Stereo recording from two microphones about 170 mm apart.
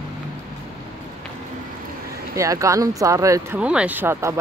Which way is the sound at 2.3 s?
20° right (ahead or behind).